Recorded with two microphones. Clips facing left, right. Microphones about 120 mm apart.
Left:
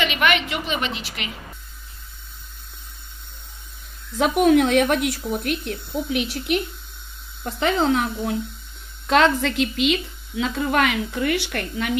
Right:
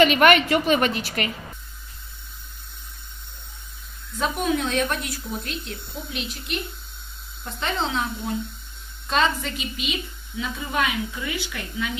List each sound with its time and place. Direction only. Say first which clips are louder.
0.0 s a woman's voice: right 5 dB; 45° right (ahead or behind)
4.2 s speech: left 8 dB; 75° left (ahead or behind)
7.8 s speech: left 6 dB; 70° left (ahead or behind)
9.0 s a woman's voice: left 5 dB; 85° left; by 12.0 s 70° left (ahead or behind)